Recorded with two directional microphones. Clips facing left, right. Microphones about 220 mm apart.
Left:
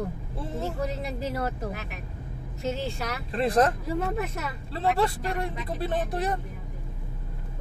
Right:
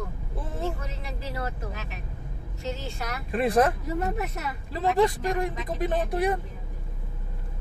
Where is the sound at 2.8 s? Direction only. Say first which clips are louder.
Left 2 dB; 35° left (ahead or behind).